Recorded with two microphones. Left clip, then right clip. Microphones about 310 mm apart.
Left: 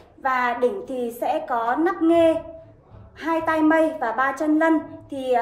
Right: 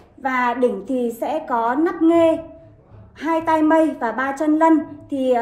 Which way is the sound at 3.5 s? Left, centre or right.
Centre.